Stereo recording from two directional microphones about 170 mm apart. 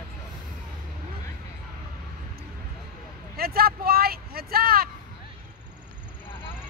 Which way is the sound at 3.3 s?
65° right (ahead or behind).